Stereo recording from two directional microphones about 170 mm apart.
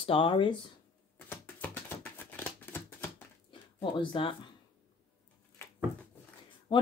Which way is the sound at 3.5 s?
30° left (ahead or behind).